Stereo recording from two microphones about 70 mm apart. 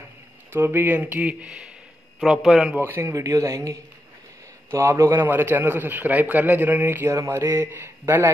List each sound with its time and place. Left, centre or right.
0.5 s a man's voice: right
1.2 s a man's voice: centre
2.8 s speech: right
5.1 s a man's voice: right
7.1 s speech: right
7.7 s speech: right